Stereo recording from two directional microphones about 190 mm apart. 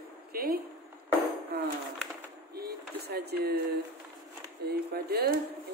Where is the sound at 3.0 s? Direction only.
60° right (ahead or behind).